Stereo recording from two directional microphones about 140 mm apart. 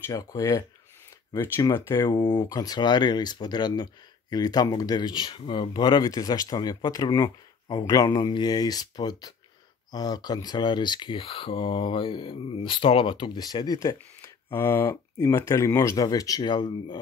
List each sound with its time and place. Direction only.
0.1 s speech: 25° left (ahead or behind)
2.0 s speech: 30° left (ahead or behind)